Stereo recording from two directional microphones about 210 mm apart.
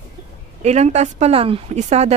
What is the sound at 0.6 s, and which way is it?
A woman's voice, 30° right (ahead or behind).